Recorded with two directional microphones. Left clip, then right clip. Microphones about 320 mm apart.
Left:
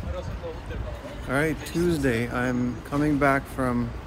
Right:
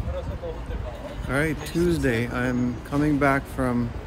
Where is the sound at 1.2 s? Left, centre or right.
Centre.